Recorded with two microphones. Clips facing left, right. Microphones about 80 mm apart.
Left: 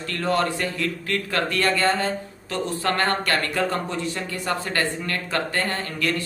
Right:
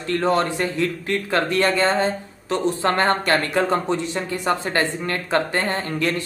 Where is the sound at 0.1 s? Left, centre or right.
Right.